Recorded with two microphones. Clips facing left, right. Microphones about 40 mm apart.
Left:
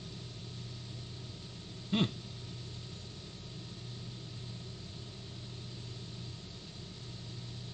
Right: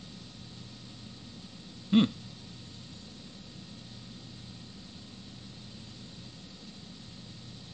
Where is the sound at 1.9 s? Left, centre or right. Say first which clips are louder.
Right 8 dB; right.